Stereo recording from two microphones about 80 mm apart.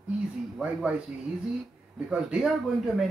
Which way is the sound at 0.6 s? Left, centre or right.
Centre.